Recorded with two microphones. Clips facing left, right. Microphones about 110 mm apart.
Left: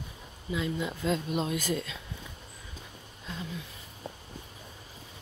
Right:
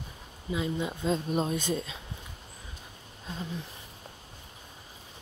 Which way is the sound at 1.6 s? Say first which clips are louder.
Even; 25° right (ahead or behind).